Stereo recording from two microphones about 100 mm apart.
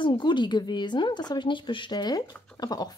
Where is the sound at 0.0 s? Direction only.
50° left (ahead or behind).